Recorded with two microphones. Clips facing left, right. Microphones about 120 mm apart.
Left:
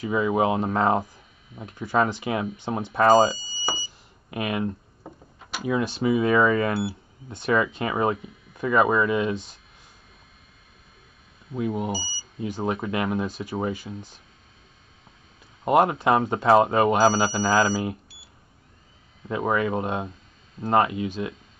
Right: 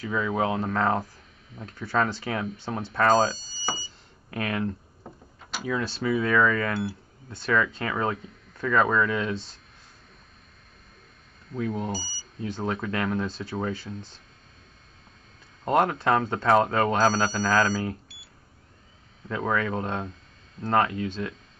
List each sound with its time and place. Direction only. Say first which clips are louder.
0.0 s speech: left 4 dB; 15° left (ahead or behind)
5.7 s speech: left 4 dB; 20° left (ahead or behind)
11.5 s speech: left 2 dB; 10° left (ahead or behind)
15.6 s speech: left 3 dB; 15° left (ahead or behind)
19.2 s speech: left 3 dB; 15° left (ahead or behind)